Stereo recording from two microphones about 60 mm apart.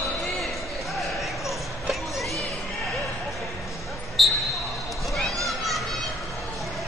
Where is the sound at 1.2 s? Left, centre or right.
Centre.